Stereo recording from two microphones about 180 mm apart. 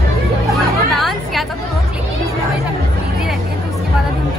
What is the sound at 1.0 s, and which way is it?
Chatter, centre (ahead or behind).